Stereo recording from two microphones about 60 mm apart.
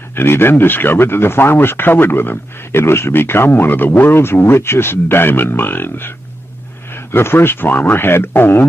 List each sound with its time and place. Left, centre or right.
0.1 s speech: left